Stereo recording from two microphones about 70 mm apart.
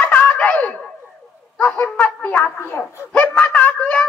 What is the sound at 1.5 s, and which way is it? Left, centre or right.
A child's voice, left.